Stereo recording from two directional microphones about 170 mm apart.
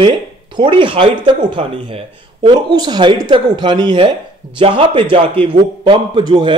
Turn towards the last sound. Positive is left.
turn(degrees=-25)  # may be behind; listen again after turning